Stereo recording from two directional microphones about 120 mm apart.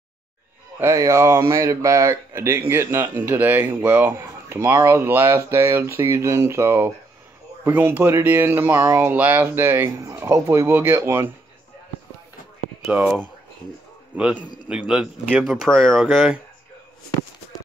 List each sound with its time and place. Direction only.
0.7 s speech: 25° right (ahead or behind)
12.8 s speech: 5° right (ahead or behind)